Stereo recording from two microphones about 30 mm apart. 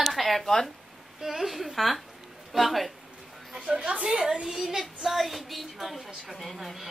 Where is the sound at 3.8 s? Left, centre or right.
Right.